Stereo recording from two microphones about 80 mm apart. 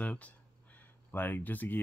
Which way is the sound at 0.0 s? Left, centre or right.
Centre.